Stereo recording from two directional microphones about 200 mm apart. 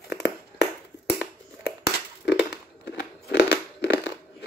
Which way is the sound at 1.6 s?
55° left (ahead or behind).